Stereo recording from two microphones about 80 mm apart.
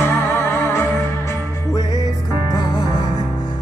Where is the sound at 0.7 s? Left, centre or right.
Left.